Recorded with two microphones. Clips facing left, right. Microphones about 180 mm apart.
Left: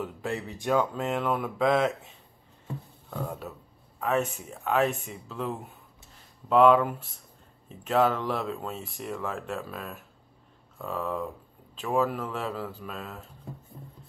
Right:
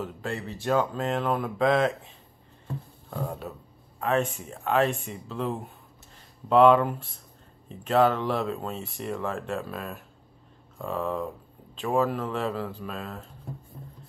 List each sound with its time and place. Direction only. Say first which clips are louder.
0.0 s speech: even; 15° left (ahead or behind)
3.1 s speech: right 1 dB; 10° right (ahead or behind)
4.0 s speech: right 1 dB; 5° left (ahead or behind)